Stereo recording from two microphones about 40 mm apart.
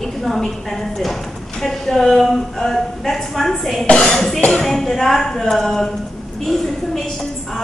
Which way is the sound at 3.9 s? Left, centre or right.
Left.